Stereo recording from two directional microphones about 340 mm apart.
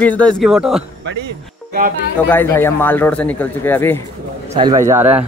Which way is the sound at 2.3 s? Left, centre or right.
Centre.